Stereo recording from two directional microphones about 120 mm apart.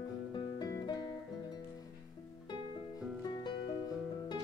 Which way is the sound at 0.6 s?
35° left (ahead or behind).